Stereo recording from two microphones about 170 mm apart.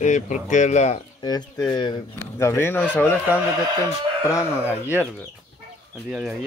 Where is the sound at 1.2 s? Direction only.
20° left (ahead or behind).